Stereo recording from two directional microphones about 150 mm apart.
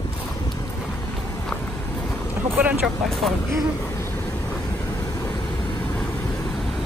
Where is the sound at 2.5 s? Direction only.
10° right (ahead or behind).